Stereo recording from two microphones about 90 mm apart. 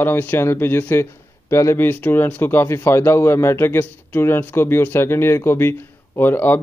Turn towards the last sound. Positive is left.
turn(degrees=20)  # may be behind; listen again after turning